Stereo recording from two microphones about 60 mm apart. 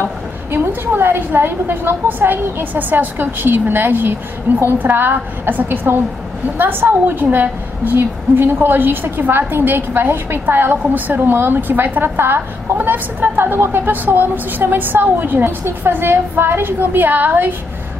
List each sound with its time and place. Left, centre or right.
0.5 s a woman's voice: right